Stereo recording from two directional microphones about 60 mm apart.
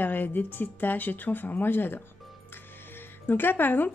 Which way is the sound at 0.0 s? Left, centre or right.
Left.